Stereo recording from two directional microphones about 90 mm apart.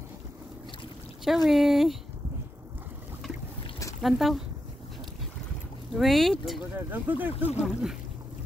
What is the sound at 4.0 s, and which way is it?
Speech, centre (ahead or behind).